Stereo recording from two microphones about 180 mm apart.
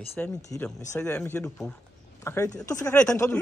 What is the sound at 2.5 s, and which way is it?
Speech, 20° left (ahead or behind).